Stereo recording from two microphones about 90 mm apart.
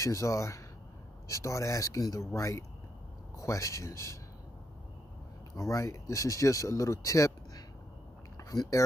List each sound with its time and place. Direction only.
0.0 s speech: 35° left (ahead or behind)
5.6 s speech: 35° left (ahead or behind)